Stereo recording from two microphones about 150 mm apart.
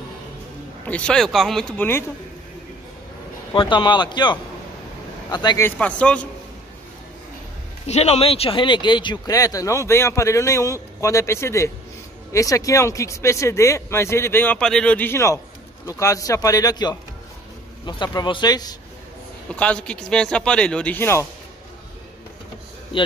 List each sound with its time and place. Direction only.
0.8 s speech: 5° left (ahead or behind)
3.5 s speech: 30° left (ahead or behind)
5.6 s speech: 10° left (ahead or behind)
7.8 s speech: 45° left (ahead or behind); by 18.8 s 25° left (ahead or behind)
19.5 s speech: 10° left (ahead or behind)